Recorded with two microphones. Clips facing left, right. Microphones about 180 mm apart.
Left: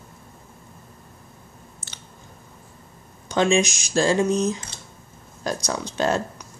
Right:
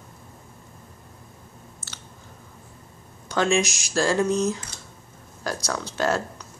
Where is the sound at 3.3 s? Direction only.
20° left (ahead or behind).